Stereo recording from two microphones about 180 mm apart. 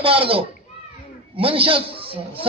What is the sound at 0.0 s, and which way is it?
A man's voice, 30° right (ahead or behind).